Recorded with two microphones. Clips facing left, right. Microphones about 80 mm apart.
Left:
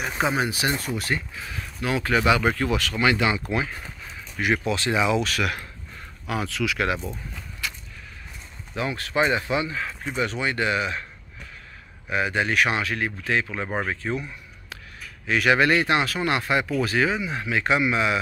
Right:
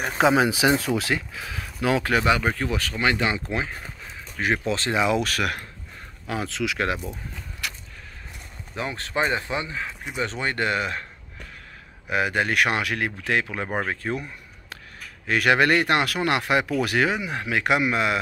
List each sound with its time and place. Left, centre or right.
0.2 s speech: right
2.1 s speech: right
6.4 s speech: right
7.6 s vehicle: right
8.7 s speech: right
10.2 s speech: right
12.1 s speech: right
13.7 s speech: right